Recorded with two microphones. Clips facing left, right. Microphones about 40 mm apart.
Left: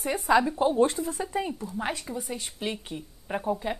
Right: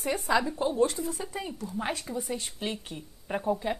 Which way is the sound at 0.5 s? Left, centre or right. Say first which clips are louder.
Left 3 dB; left.